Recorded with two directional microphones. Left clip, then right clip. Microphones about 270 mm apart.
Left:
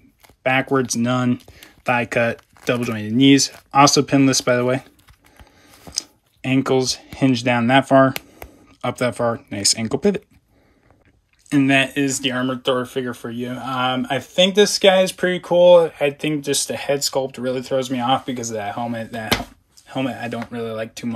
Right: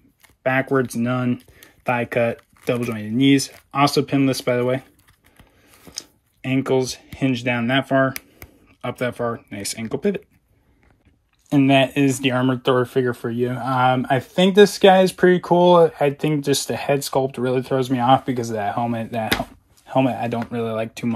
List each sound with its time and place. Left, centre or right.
0.4 s speech: centre
5.9 s speech: centre
11.5 s speech: centre